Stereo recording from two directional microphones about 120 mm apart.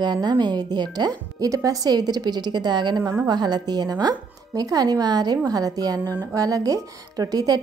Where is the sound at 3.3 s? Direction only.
35° right (ahead or behind).